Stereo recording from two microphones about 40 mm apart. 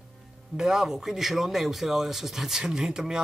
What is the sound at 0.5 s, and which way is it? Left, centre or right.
Speech, centre.